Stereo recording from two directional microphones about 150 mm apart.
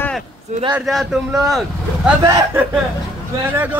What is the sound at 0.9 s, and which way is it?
Speech, centre (ahead or behind).